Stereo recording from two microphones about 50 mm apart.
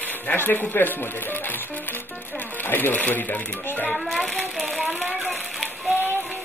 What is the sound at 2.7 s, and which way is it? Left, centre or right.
Speech, left.